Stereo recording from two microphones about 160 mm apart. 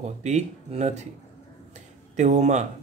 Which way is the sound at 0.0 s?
45° right (ahead or behind).